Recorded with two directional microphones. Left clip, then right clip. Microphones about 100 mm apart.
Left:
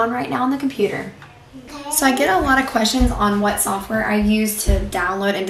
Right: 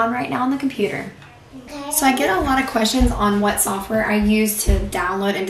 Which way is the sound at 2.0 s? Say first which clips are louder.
Left 1 dB; 15° left (ahead or behind).